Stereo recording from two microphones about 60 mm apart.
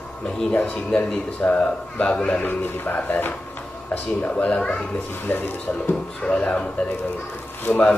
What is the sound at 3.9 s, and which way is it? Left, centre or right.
Speech, left.